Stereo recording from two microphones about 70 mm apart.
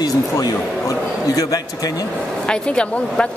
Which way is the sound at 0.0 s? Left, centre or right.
Left.